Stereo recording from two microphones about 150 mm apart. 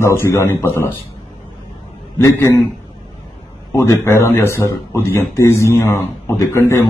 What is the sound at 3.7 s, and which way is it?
A man's voice, 20° left (ahead or behind).